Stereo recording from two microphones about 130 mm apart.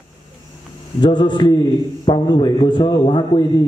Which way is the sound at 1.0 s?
35° left (ahead or behind).